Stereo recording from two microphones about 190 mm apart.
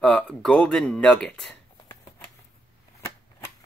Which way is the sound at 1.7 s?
20° left (ahead or behind).